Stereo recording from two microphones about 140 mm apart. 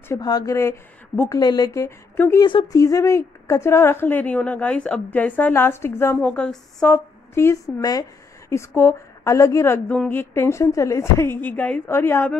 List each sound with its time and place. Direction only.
0.1 s a woman's voice: 30° left (ahead or behind)
1.4 s a woman's voice: 30° left (ahead or behind)
2.4 s speech: 30° left (ahead or behind); by 7.0 s 5° left (ahead or behind)
7.4 s a woman's voice: 20° left (ahead or behind)